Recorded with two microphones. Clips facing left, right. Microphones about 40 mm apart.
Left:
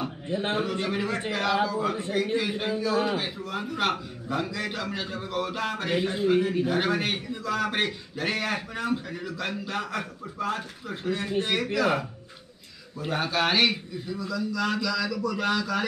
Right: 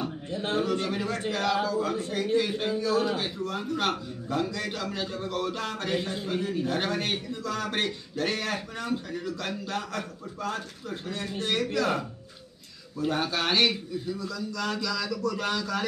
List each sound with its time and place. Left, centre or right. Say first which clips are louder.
0.3 s a man's voice: left 1 dB; left
0.7 s a man's voice: even; centre
13.0 s a man's voice: left 1 dB; centre